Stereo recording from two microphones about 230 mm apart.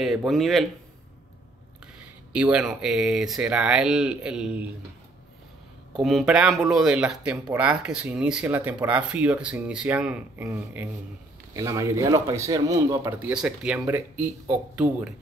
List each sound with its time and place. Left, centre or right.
0.0 s speech: centre
2.3 s speech: centre
5.9 s speech: centre
13.3 s speech: centre